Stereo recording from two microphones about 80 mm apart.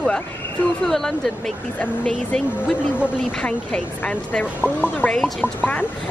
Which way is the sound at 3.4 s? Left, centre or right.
Centre.